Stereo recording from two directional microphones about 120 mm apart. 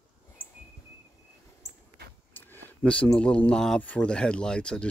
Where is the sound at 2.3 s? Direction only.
15° left (ahead or behind).